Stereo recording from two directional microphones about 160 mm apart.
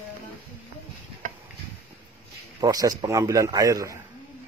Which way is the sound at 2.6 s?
25° right (ahead or behind).